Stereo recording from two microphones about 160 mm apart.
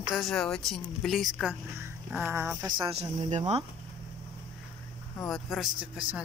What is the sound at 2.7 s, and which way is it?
Speech, 30° right (ahead or behind).